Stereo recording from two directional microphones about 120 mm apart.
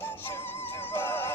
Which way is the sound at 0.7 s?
20° left (ahead or behind).